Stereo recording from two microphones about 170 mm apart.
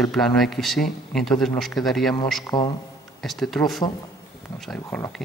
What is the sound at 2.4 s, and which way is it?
Speech, 25° left (ahead or behind).